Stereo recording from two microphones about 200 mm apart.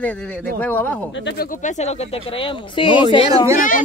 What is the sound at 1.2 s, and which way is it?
Speech, 50° left (ahead or behind).